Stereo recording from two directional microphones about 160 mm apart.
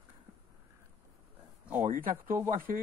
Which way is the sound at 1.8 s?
60° right (ahead or behind).